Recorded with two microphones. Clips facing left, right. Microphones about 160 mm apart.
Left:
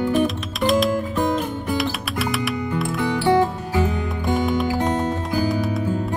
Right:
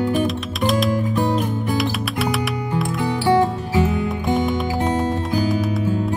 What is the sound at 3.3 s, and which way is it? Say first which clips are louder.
Music: right 2 dB; 25° right (ahead or behind).